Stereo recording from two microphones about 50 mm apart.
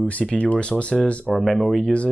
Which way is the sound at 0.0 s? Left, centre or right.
Left.